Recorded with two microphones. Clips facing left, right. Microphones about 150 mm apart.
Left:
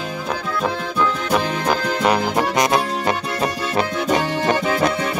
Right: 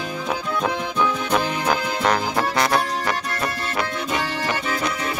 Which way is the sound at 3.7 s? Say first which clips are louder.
Left 6 dB; 35° left (ahead or behind).